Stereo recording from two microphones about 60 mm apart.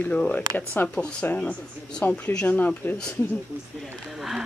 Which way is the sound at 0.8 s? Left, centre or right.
Left.